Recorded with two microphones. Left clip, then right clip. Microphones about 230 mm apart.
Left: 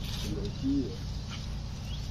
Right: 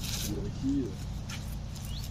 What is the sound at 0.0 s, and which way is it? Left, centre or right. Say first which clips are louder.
Bird: right 3 dB; centre.